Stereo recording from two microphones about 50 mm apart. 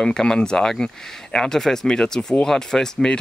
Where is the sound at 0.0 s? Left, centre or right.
Centre.